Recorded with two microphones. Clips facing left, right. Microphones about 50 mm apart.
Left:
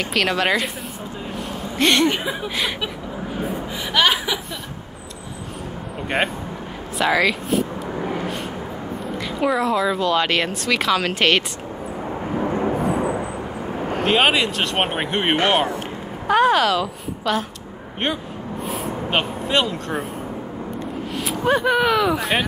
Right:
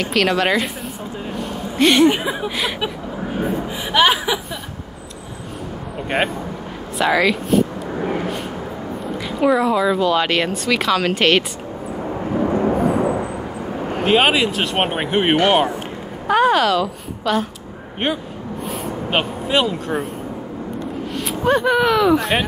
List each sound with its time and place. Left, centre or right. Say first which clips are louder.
0.0 s speech: right 3 dB; centre
3.9 s chuckle: right 3 dB; centre
6.0 s speech: right 2 dB; centre
12.0 s vehicle: right 3 dB; centre
12.6 s a sound: right 3 dB; centre
16.3 s a woman's voice: right 1 dB; centre
21.1 s a sound: left 1 dB; centre
21.5 s speech: right 2 dB; centre